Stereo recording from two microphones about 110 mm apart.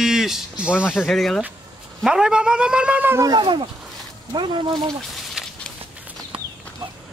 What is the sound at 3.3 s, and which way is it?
Speech, 50° right (ahead or behind).